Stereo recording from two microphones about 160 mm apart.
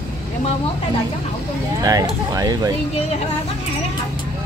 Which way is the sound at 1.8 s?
20° right (ahead or behind).